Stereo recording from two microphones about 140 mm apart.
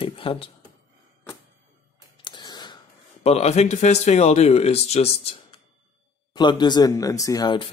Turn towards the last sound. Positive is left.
turn(degrees=30)  # may be behind; listen again after turning